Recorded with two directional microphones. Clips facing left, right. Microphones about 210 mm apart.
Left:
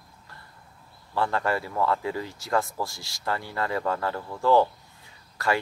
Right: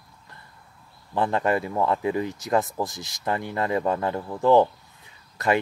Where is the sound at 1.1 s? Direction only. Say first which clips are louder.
Right 3 dB; 20° right (ahead or behind).